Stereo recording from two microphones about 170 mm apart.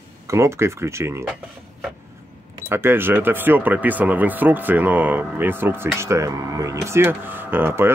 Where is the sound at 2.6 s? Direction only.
15° right (ahead or behind).